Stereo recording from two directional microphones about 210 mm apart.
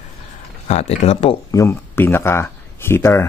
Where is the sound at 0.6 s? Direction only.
30° left (ahead or behind).